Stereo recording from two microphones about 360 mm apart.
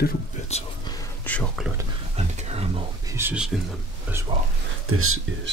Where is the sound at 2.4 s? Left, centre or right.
Centre.